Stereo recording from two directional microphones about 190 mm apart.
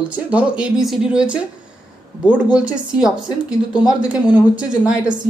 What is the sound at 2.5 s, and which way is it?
A woman's voice, 5° right (ahead or behind).